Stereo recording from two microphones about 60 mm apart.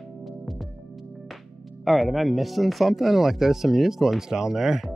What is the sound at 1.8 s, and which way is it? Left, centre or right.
Speech, centre.